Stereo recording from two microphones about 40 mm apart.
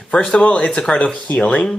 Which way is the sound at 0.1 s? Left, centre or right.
Left.